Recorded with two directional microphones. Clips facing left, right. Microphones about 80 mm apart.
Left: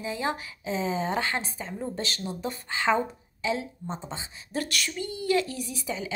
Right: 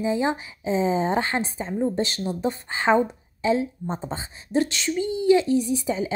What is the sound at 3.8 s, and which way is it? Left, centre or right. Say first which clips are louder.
Speech: right 6 dB; right.